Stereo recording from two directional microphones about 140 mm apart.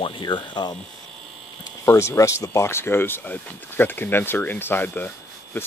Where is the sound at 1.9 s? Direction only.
20° left (ahead or behind).